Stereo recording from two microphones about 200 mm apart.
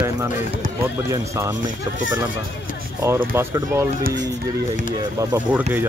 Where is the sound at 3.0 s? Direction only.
15° right (ahead or behind).